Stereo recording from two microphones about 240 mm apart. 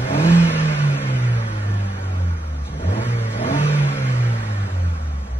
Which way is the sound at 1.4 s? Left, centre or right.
Left.